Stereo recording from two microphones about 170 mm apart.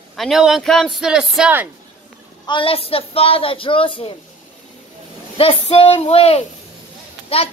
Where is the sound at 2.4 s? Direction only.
30° left (ahead or behind).